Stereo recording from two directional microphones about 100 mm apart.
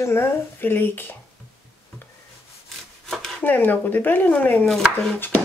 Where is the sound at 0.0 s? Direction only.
25° left (ahead or behind).